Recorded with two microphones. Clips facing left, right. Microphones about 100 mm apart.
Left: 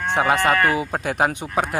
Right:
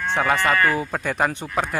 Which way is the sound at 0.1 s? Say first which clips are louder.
Left 2 dB; 15° left (ahead or behind).